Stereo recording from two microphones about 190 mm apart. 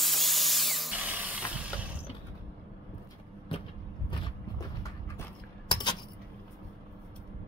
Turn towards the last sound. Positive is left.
turn(degrees=25)  # may be behind; listen again after turning